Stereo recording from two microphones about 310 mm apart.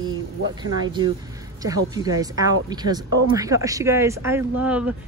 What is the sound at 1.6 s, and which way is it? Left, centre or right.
Speech, centre.